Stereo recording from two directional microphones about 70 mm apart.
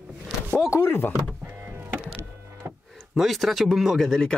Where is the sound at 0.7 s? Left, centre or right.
Left.